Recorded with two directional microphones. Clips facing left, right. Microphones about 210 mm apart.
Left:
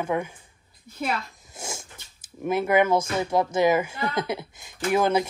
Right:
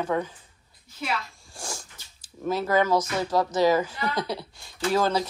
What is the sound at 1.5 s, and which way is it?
Dog, 25° left (ahead or behind).